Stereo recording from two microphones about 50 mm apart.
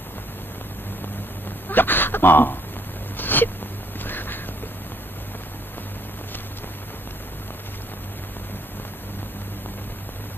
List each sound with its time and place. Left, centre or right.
1.7 s speech: left
3.2 s a sound: left
4.0 s duck: left